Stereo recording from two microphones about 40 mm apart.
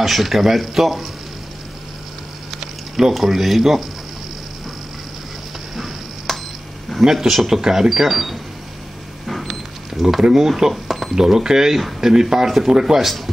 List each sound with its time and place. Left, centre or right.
0.0 s speech: centre
2.6 s speech: centre
5.8 s a sound: centre
7.1 s speech: centre
9.2 s a sound: centre
9.9 s a sound: centre
10.2 s speech: centre
10.7 s cash register: centre
11.1 s speech: centre